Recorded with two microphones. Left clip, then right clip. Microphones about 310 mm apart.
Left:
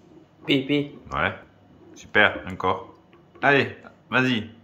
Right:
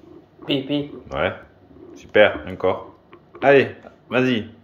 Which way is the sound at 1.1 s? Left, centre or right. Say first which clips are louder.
Right 3 dB; centre.